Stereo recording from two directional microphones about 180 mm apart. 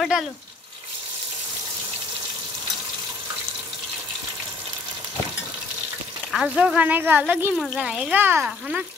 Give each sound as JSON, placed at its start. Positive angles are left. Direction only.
{"t": 6.3, "sound": "speech", "side_deg": -5}